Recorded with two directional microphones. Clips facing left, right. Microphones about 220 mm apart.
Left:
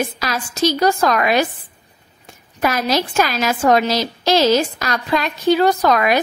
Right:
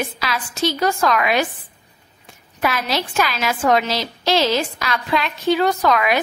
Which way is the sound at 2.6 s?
45° left (ahead or behind).